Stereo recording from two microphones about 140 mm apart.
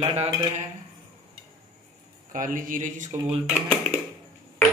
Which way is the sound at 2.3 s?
75° right (ahead or behind).